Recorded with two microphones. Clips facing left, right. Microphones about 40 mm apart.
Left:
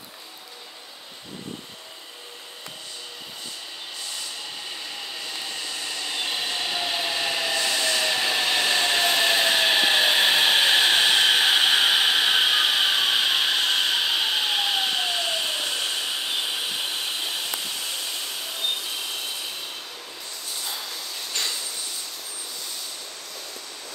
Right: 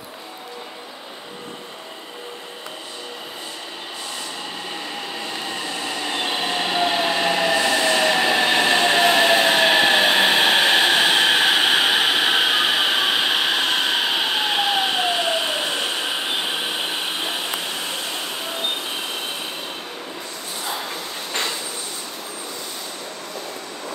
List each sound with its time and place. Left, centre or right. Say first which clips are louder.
5.1 s train: right 5 dB; right
10.3 s a sound: right 3 dB; right
21.3 s train: right 4 dB; right